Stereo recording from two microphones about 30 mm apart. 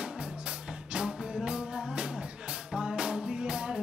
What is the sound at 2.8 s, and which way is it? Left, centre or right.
Music, right.